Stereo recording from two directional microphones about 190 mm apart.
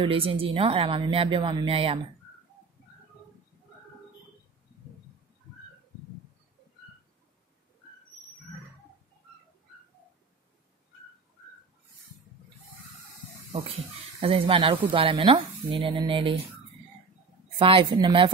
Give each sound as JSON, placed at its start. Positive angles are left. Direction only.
{"t": 0.0, "sound": "speech", "side_deg": -25}
{"t": 13.5, "sound": "speech", "side_deg": -25}
{"t": 17.6, "sound": "speech", "side_deg": -25}